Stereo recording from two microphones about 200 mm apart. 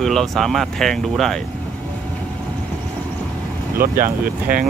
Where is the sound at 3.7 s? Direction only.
45° right (ahead or behind).